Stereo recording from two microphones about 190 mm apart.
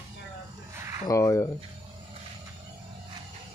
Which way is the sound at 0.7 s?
15° right (ahead or behind).